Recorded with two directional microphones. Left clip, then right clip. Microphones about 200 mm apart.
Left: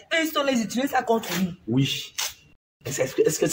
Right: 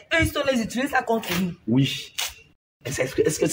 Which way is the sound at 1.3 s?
30° right (ahead or behind).